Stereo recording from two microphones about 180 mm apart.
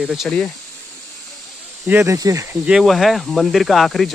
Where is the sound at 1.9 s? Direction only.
15° right (ahead or behind).